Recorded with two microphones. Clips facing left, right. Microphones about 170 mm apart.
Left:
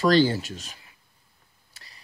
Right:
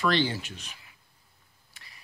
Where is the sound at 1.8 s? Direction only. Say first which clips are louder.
Left 1 dB; 35° left (ahead or behind).